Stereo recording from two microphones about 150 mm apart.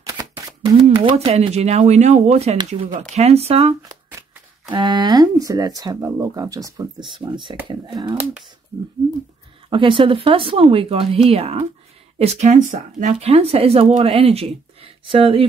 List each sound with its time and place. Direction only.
0.0 s a sound: 25° right (ahead or behind)
1.1 s speech: 45° right (ahead or behind)
4.6 s speech: 30° right (ahead or behind)
9.7 s speech: 35° right (ahead or behind); by 12.7 s 55° right (ahead or behind)
12.7 s speech: 45° right (ahead or behind)